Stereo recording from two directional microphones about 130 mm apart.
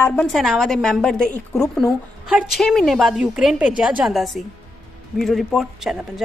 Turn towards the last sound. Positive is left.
turn(degrees=0)  # may be behind; listen again after turning